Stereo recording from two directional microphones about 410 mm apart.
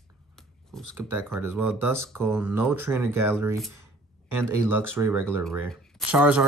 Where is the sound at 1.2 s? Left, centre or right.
Centre.